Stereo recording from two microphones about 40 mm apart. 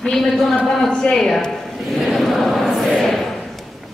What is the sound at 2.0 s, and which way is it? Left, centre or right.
Choir, centre.